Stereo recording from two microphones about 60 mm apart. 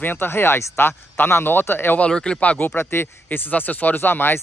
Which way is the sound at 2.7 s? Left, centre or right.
Left.